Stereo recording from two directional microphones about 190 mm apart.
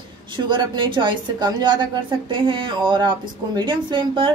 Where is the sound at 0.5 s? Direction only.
25° right (ahead or behind).